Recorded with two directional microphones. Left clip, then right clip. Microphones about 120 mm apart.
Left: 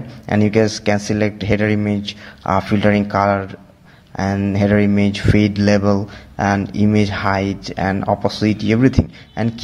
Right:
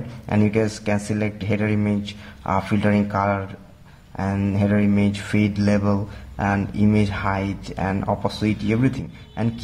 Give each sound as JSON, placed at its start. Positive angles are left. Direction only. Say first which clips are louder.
{"t": 0.3, "sound": "speech", "louder": "left 6 dB", "side_deg": 30}
{"t": 4.6, "sound": "speech", "louder": "left 6 dB", "side_deg": 35}